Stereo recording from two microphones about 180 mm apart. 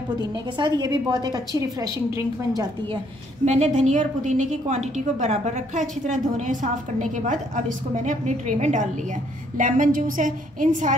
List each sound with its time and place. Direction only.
0.2 s a woman's voice: 25° right (ahead or behind)
3.4 s a woman's voice: 40° right (ahead or behind)